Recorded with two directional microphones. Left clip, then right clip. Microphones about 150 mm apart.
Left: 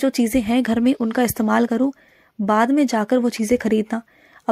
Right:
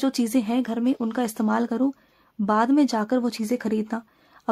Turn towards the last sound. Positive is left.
turn(degrees=15)  # may be behind; listen again after turning